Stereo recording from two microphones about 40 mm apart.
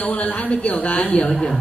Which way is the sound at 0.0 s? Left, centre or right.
Left.